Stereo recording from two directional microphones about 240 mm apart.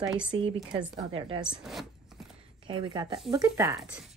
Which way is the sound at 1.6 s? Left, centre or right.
Centre.